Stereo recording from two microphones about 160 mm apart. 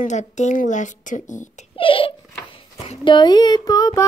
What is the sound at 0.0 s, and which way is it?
A woman's voice, 45° left (ahead or behind).